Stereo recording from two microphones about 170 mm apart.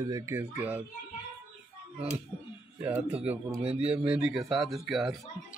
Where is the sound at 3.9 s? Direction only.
5° right (ahead or behind).